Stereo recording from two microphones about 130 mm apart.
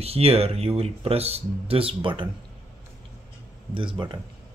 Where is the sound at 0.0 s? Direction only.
50° right (ahead or behind).